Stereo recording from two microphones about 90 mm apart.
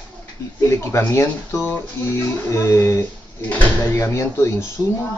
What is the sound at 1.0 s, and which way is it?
Speech, 30° left (ahead or behind).